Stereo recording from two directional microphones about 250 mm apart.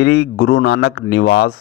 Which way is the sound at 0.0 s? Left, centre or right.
Left.